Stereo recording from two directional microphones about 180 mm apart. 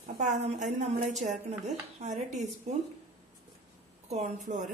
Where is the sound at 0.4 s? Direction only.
40° right (ahead or behind).